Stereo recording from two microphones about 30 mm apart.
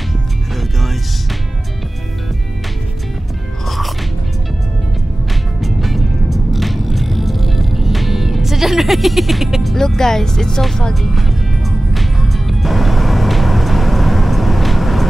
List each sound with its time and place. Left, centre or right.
3.6 s music: centre
5.6 s music: centre
9.8 s speech: centre
11.0 s music: centre